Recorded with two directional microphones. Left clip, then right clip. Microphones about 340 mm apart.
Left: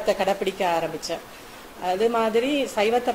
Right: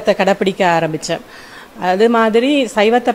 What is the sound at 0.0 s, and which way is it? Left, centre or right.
A woman's voice, right.